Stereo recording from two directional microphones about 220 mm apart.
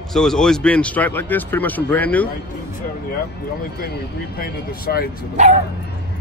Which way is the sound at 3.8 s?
45° left (ahead or behind).